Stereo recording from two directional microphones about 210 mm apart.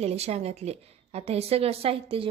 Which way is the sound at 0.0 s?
30° right (ahead or behind).